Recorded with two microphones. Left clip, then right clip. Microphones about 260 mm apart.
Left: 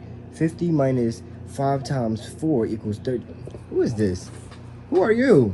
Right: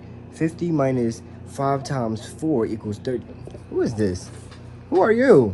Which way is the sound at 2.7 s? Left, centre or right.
Centre.